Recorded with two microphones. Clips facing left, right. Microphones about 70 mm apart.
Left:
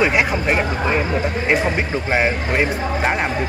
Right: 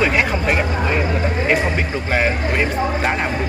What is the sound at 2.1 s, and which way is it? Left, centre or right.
Speech, centre.